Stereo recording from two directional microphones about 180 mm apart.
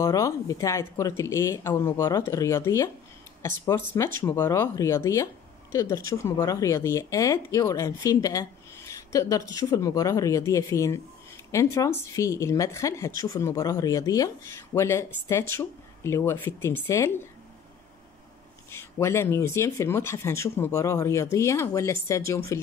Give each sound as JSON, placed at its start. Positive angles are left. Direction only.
{"t": 0.0, "sound": "speech", "side_deg": 20}
{"t": 18.7, "sound": "speech", "side_deg": 15}